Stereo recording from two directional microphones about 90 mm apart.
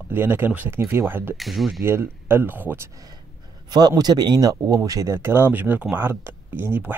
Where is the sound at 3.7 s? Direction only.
50° right (ahead or behind).